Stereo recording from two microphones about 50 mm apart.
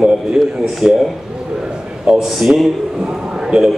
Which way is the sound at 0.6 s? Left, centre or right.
Centre.